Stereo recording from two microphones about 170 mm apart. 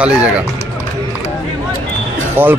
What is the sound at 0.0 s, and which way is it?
Speech, 5° right (ahead or behind).